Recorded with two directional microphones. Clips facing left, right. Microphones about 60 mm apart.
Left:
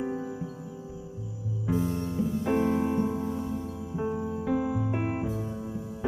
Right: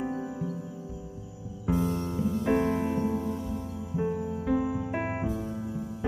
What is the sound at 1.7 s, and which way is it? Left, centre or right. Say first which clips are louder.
Music: right 1 dB; right.